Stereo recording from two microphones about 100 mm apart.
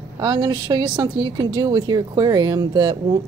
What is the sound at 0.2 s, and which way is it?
A woman's voice, 50° right (ahead or behind).